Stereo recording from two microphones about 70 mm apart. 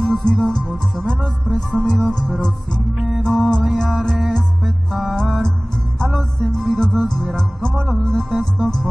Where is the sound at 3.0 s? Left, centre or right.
Centre.